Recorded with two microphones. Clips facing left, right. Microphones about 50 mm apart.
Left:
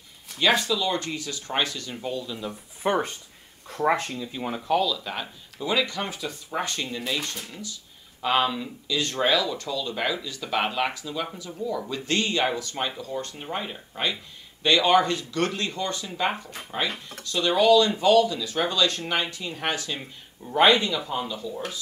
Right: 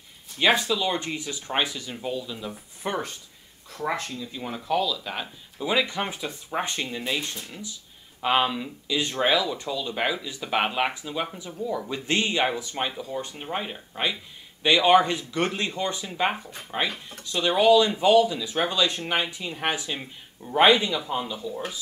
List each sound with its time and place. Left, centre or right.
0.4 s speech: centre
2.8 s speech: centre
3.6 s speech: left
4.2 s speech: centre
5.7 s speech: centre
8.2 s speech: centre
21.1 s speech: centre